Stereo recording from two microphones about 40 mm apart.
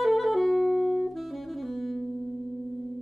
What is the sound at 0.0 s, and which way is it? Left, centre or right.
Saxophone, centre.